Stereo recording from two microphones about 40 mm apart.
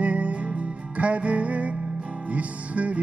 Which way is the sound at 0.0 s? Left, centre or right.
Right.